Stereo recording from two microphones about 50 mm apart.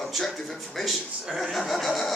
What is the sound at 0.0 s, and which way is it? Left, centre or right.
A man's voice, centre.